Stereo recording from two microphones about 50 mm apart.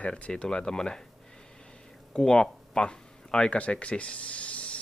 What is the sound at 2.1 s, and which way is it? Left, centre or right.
Speech, centre.